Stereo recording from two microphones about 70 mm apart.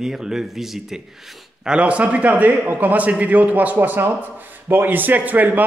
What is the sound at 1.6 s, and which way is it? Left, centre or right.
A man's voice, centre.